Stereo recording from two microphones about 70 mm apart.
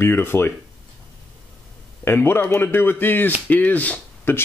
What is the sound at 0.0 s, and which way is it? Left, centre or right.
Speech, left.